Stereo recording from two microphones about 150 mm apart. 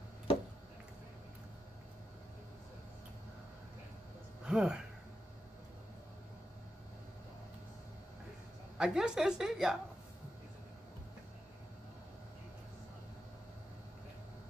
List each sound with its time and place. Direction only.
4.5 s speech: 5° right (ahead or behind)
8.7 s a woman's voice: 5° right (ahead or behind)